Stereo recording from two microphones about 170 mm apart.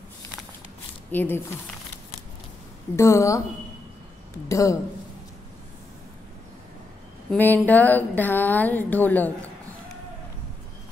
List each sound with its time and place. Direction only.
1.1 s speech: 10° left (ahead or behind)
3.0 s speech: 15° left (ahead or behind)
4.5 s speech: 20° left (ahead or behind)
7.2 s speech: 10° left (ahead or behind)